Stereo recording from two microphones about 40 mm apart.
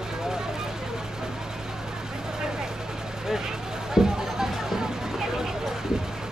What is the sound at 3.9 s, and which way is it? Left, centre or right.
Music, centre.